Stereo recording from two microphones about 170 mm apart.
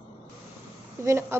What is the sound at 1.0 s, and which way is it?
Speech, 15° right (ahead or behind).